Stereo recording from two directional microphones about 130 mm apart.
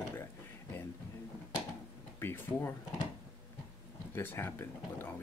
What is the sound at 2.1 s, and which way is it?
Speech, 15° left (ahead or behind).